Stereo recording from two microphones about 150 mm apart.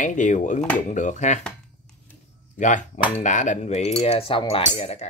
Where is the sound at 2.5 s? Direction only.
55° left (ahead or behind).